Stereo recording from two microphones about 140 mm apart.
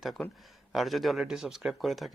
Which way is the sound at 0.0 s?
Centre (ahead or behind).